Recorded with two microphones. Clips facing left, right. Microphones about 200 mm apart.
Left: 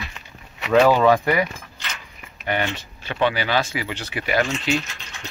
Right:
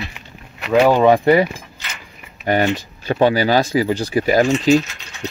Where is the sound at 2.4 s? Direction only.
40° right (ahead or behind).